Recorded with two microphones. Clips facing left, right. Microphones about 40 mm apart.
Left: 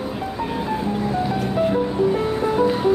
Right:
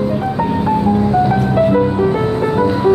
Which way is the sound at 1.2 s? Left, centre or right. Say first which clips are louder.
Right 7 dB; right.